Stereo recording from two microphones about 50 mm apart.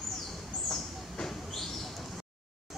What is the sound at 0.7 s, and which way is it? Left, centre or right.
Train, centre.